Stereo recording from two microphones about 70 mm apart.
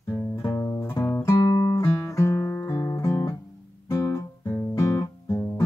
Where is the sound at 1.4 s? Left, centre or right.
Left.